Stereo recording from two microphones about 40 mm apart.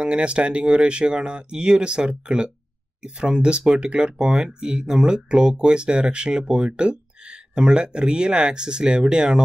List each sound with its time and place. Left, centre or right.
0.0 s speech: right